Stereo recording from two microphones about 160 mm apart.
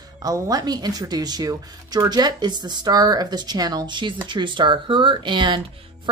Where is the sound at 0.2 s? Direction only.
25° right (ahead or behind).